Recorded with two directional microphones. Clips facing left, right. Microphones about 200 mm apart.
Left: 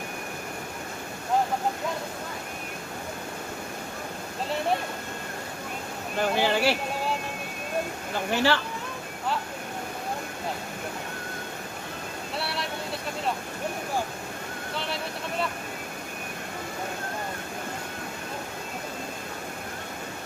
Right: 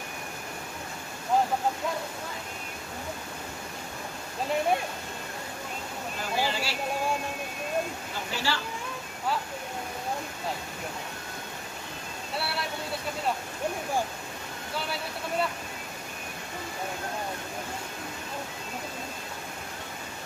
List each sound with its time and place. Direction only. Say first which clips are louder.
6.1 s speech: left 6 dB; 60° left (ahead or behind)
8.3 s speech: left 8 dB; 60° left (ahead or behind)